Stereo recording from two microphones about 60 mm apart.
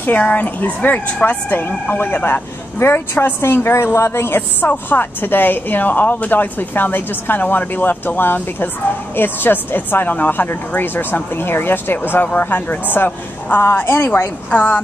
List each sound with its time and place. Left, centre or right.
0.0 s speech: left
14.5 s speech: left